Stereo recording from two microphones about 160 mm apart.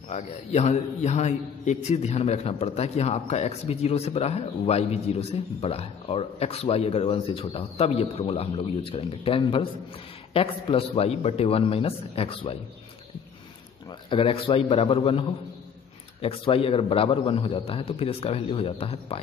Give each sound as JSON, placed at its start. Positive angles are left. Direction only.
{"t": 0.1, "sound": "a man's voice", "side_deg": 45}
{"t": 14.1, "sound": "a man's voice", "side_deg": 35}